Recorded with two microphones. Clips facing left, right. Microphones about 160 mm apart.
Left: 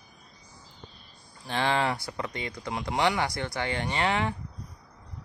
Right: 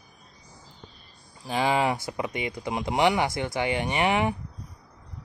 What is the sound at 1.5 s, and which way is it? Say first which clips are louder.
A man's voice: right 3 dB; 10° right (ahead or behind).